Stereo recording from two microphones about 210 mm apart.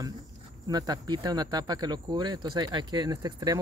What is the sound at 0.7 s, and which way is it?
Speech, 20° right (ahead or behind).